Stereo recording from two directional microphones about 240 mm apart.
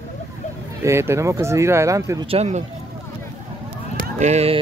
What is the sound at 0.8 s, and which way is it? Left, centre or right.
Speech, centre.